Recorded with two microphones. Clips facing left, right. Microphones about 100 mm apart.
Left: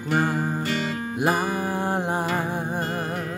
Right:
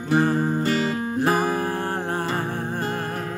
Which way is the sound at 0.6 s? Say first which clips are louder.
Right 4 dB; 35° right (ahead or behind).